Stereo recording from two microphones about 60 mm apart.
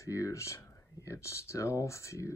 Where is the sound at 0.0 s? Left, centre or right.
Left.